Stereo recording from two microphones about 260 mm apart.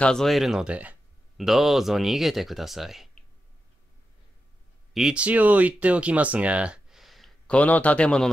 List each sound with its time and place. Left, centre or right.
0.0 s speech: centre
4.9 s speech: centre